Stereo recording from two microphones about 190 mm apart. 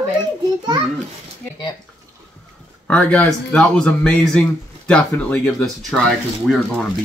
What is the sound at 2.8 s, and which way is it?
Speech, 5° left (ahead or behind).